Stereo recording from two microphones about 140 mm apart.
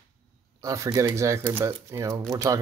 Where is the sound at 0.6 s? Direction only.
25° right (ahead or behind).